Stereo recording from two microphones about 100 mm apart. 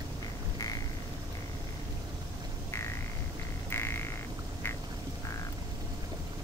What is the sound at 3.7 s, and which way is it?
Music, 25° left (ahead or behind).